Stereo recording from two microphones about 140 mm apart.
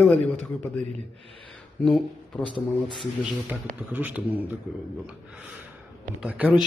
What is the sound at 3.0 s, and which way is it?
Speech, 10° right (ahead or behind).